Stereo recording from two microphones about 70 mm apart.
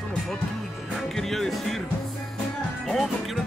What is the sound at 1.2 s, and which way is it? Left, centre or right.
Speech, centre.